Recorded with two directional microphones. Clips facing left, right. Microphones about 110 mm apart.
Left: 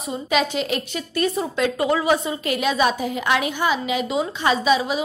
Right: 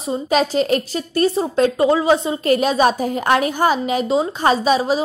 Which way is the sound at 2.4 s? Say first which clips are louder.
Right 7 dB; 40° right (ahead or behind).